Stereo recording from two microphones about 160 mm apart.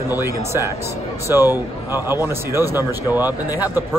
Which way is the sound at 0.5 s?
15° right (ahead or behind).